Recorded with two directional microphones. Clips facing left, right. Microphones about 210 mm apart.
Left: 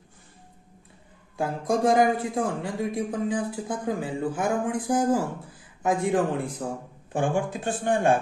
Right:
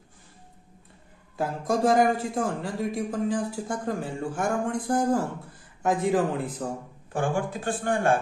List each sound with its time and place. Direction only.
1.3 s speech: centre (ahead or behind)
7.1 s speech: 20° left (ahead or behind)